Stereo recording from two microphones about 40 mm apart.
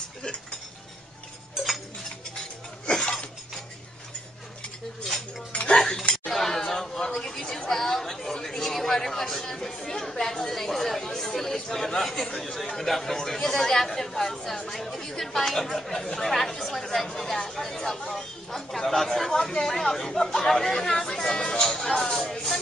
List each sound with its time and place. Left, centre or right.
0.2 s dishes: left
2.9 s a sound: centre
5.5 s cutlery: left
5.8 s a sound: centre
7.4 s chatter: centre
21.0 s music: centre